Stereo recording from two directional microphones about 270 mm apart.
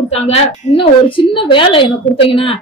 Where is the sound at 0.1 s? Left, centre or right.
Left.